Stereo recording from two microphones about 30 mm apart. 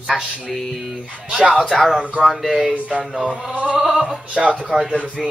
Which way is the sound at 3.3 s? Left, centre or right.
Centre.